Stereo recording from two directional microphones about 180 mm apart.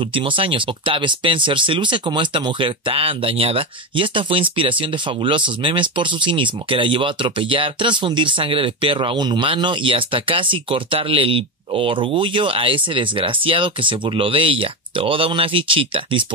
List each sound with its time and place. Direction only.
0.0 s speech: 30° right (ahead or behind)